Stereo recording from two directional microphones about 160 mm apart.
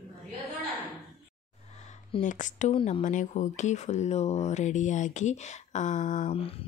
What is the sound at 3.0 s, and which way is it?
Speech, 50° left (ahead or behind).